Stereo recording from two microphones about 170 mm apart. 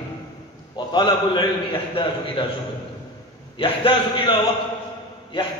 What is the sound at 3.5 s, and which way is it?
A man's voice, 30° left (ahead or behind).